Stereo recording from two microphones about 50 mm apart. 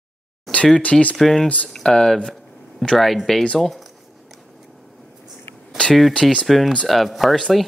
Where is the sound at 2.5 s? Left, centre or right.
Centre.